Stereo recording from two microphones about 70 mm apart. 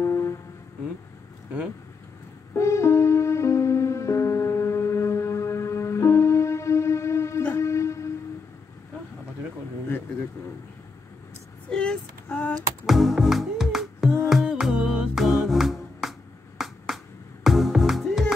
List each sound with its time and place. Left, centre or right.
0.0 s a sound: left
2.5 s music: left
11.7 s child singing: centre
12.3 s a sound: left
12.8 s music: centre
15.1 s finger snapping: centre